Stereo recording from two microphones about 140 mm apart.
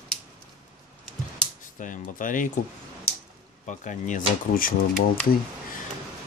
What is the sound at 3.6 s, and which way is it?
Speech, 60° left (ahead or behind).